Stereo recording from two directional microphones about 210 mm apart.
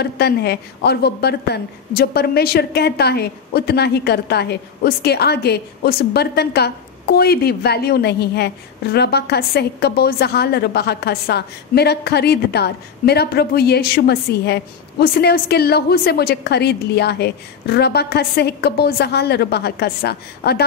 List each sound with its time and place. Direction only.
0.0 s a woman's voice: 50° left (ahead or behind)